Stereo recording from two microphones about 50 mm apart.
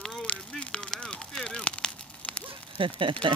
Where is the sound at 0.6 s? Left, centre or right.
Left.